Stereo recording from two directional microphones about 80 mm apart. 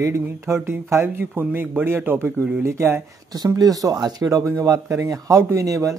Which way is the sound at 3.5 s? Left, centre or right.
Right.